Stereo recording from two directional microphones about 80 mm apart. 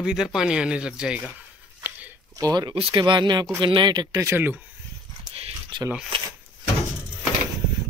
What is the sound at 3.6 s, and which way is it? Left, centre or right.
Speech, right.